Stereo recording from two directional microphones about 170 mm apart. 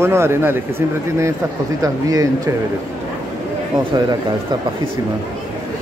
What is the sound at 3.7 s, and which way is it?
Speech, 25° right (ahead or behind).